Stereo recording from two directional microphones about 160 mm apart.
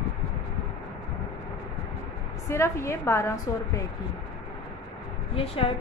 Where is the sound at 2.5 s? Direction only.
15° left (ahead or behind).